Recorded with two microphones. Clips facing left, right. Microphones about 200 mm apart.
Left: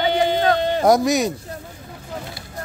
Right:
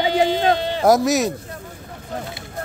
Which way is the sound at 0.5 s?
50° left (ahead or behind).